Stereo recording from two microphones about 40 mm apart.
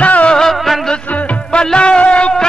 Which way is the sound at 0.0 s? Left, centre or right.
Left.